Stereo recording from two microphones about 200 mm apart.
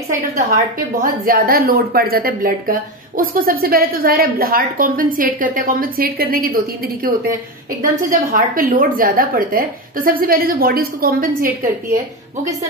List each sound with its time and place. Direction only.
0.7 s a woman's voice: 45° right (ahead or behind)